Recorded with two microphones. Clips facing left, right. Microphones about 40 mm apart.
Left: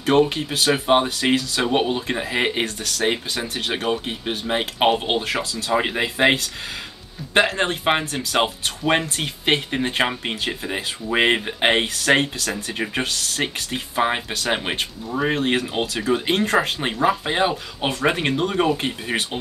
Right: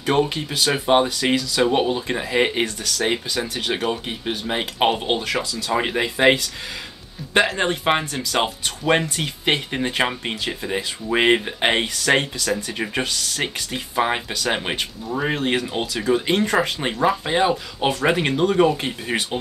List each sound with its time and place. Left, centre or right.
0.0 s speech: centre
1.0 s speech: left
1.5 s speech: centre
5.4 s speech: left
5.7 s speech: centre
7.3 s speech: centre
13.7 s speech: centre